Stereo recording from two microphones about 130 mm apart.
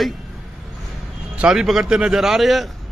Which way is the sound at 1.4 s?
5° right (ahead or behind).